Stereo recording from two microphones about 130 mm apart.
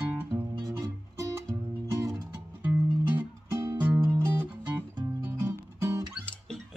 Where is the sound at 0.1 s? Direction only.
15° right (ahead or behind).